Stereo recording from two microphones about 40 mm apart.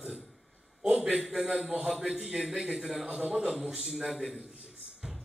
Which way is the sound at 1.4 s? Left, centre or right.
Centre.